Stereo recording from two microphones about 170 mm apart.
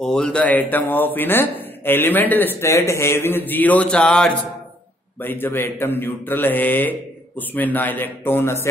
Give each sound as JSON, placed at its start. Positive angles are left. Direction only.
{"t": 0.0, "sound": "speech", "side_deg": 5}